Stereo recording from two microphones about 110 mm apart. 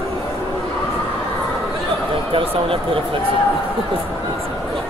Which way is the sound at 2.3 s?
55° right (ahead or behind).